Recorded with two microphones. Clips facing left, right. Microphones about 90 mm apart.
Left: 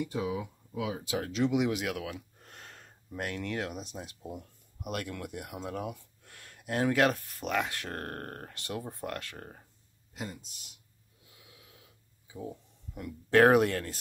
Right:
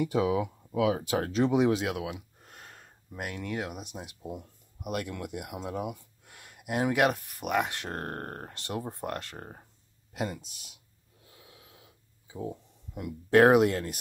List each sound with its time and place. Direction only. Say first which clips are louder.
0.0 s speech: right 6 dB; 90° right
1.0 s speech: right 3 dB; 45° right (ahead or behind); by 2.1 s 20° right (ahead or behind)
2.1 s a sound: even; 10° right (ahead or behind)
3.9 s speech: right 1 dB; 15° right (ahead or behind)
4.3 s speech: right 3 dB; 5° right (ahead or behind); by 9.7 s 25° right (ahead or behind)
10.1 s speech: right 7 dB; 70° right (ahead or behind)
11.2 s a sound: right 3 dB; 30° right (ahead or behind)